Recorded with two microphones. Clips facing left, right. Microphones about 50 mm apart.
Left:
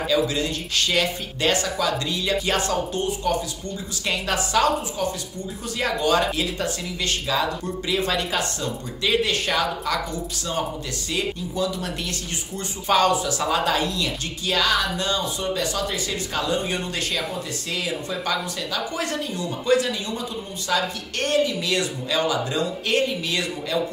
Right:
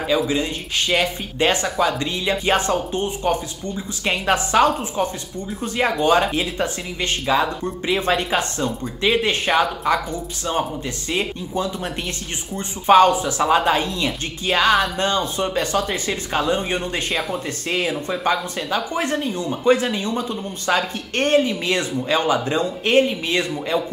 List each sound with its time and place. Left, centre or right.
0.1 s speech: right
11.1 s speech: right